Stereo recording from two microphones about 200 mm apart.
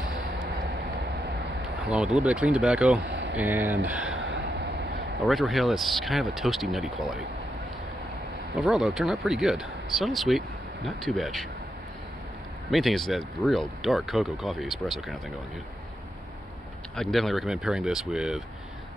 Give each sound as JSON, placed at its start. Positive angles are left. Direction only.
{"t": 1.9, "sound": "speech", "side_deg": -5}
{"t": 3.1, "sound": "a sound", "side_deg": -60}
{"t": 3.3, "sound": "speech", "side_deg": -10}
{"t": 4.2, "sound": "vehicle", "side_deg": -60}
{"t": 5.2, "sound": "speech", "side_deg": 0}
{"t": 8.5, "sound": "speech", "side_deg": 0}
{"t": 12.7, "sound": "speech", "side_deg": 0}
{"t": 16.9, "sound": "speech", "side_deg": 5}